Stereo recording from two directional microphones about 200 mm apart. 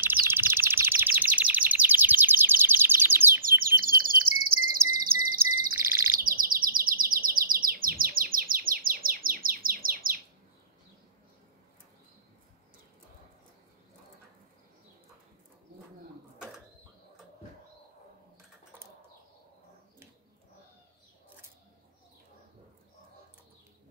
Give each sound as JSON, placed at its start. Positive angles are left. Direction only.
{"t": 0.0, "sound": "chirp", "side_deg": -10}
{"t": 3.4, "sound": "bird", "side_deg": -45}
{"t": 5.8, "sound": "bird", "side_deg": -15}
{"t": 6.1, "sound": "chirp", "side_deg": -45}